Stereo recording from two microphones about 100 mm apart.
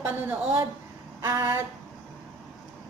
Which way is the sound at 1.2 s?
30° right (ahead or behind).